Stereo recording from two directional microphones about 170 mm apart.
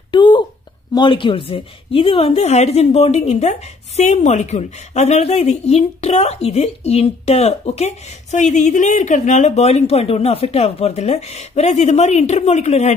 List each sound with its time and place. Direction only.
0.1 s a woman's voice: 25° left (ahead or behind)